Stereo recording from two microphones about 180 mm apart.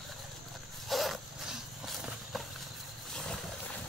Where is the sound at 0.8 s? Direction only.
Centre (ahead or behind).